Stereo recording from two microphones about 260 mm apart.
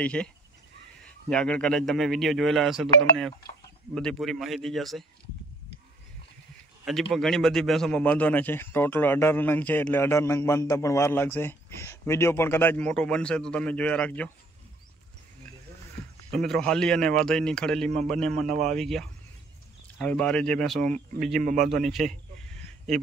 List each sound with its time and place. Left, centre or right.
0.0 s a man's voice: centre
1.3 s a man's voice: centre
3.9 s a man's voice: centre
6.8 s a man's voice: centre
16.3 s a man's voice: centre
21.4 s speech: right
21.6 s a sound: centre